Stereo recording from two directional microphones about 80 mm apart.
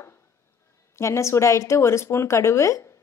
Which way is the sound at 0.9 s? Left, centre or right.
Left.